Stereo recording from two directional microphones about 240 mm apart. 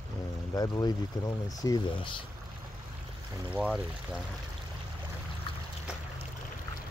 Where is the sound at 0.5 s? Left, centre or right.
Centre.